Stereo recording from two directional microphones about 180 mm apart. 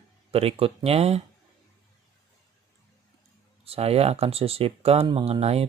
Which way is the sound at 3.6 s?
35° right (ahead or behind).